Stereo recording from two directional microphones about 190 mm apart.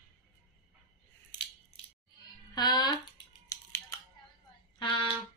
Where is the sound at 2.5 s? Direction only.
20° left (ahead or behind).